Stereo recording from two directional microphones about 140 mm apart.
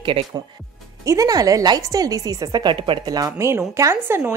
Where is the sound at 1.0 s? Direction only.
25° right (ahead or behind).